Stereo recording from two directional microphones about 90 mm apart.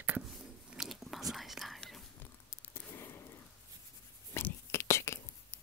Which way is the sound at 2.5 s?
25° left (ahead or behind).